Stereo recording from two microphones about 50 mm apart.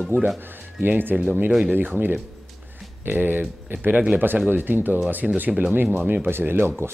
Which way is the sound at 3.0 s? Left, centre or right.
Right.